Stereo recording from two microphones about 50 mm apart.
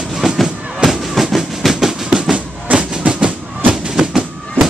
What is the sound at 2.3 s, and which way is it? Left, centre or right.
Music, right.